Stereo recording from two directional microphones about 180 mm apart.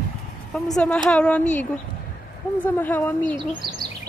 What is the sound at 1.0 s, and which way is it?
Speech, 5° left (ahead or behind).